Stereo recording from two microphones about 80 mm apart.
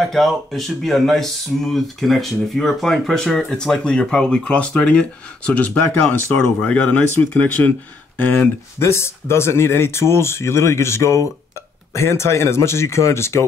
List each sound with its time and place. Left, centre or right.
0.1 s speech: centre
8.7 s speech: left